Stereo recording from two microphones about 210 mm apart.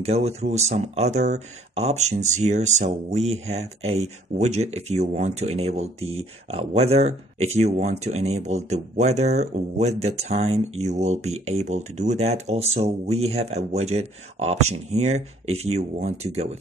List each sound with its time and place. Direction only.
0.0 s speech: 30° right (ahead or behind)